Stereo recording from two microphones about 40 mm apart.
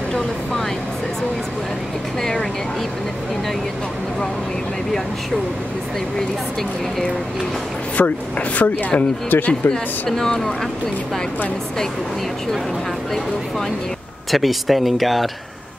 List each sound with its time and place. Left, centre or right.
8.0 s speech: left
10.0 s speech: centre
14.3 s speech: centre